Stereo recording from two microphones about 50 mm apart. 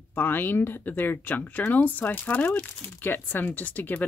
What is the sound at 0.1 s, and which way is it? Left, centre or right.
Speech, left.